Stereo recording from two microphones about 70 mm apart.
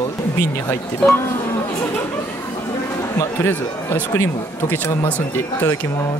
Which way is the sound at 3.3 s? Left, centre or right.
Left.